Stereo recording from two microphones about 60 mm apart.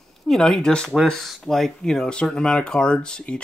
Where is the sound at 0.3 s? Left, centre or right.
Centre.